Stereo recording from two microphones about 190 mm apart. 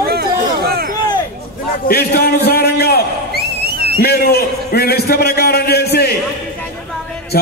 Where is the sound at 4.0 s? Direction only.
55° left (ahead or behind).